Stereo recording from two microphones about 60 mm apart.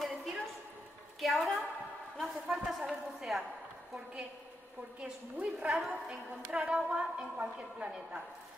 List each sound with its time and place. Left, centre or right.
0.0 s a sound: centre
2.1 s a woman's voice: centre
5.0 s speech: centre
5.7 s a woman's voice: centre
6.5 s speech: centre